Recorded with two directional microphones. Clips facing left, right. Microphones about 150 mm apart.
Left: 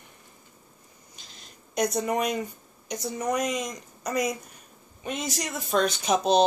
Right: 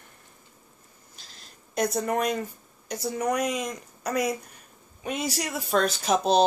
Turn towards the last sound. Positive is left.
turn(degrees=0)  # may be behind; listen again after turning